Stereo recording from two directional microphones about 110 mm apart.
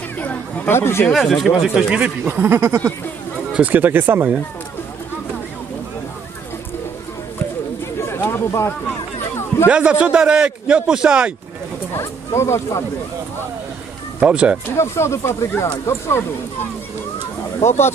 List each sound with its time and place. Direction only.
0.2 s chatter: 15° left (ahead or behind)
1.0 s speech: centre (ahead or behind); by 2.9 s 25° right (ahead or behind)
3.5 s speech: 15° right (ahead or behind)
8.1 s chatter: 20° left (ahead or behind)
9.7 s speech: 10° right (ahead or behind)
12.0 s speech: 25° left (ahead or behind)
14.2 s speech: 10° right (ahead or behind)
14.8 s speech: 25° left (ahead or behind)
17.6 s speech: 25° left (ahead or behind)